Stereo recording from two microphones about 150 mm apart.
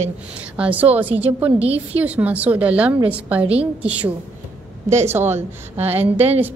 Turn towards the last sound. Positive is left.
turn(degrees=-10)  # may be behind; listen again after turning